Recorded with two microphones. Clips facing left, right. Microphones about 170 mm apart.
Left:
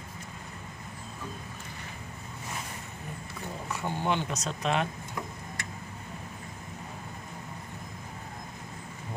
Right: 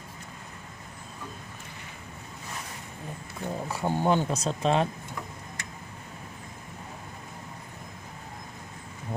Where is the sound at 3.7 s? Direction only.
40° right (ahead or behind).